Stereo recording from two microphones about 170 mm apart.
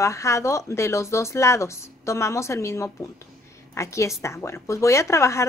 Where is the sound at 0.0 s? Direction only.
15° left (ahead or behind).